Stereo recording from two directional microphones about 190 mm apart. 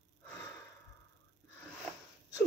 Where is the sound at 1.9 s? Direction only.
5° left (ahead or behind).